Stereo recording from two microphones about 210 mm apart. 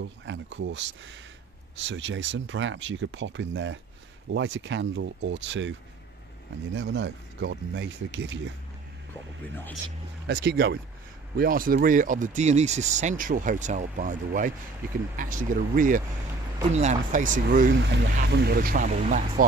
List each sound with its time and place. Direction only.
0.2 s speech: 60° right (ahead or behind)
10.2 s speech: 55° right (ahead or behind)
17.9 s speech: 50° right (ahead or behind)